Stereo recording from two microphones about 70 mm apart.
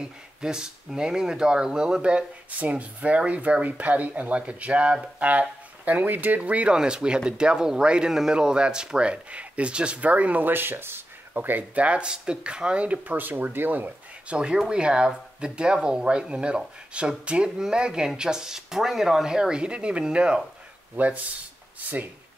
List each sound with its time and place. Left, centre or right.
0.0 s speech: centre